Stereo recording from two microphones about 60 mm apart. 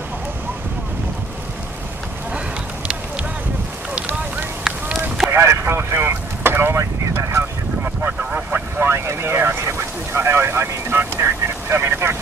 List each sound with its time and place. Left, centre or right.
4.7 s a sound: centre
5.3 s vehicle: right
7.2 s boat: right
8.2 s vehicle: right
8.5 s vehicle: right
8.9 s vehicle: right